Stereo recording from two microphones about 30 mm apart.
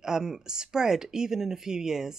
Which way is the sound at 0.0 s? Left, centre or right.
Centre.